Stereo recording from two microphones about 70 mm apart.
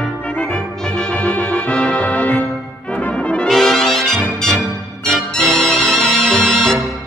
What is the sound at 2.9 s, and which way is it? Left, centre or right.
Brass instrument, centre.